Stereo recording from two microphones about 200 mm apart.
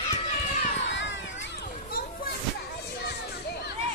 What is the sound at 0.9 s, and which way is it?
Children playing, 65° left (ahead or behind).